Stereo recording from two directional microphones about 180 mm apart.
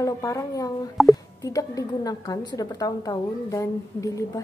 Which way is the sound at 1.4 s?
20° left (ahead or behind).